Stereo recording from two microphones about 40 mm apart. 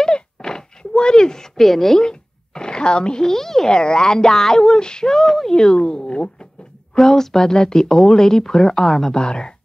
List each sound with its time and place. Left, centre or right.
0.0 s a sound: centre
2.0 s a sound: centre
3.3 s speech: centre
3.7 s speech: centre
5.1 s speech: centre
5.6 s speech: left
7.0 s speech: centre
9.1 s speech: left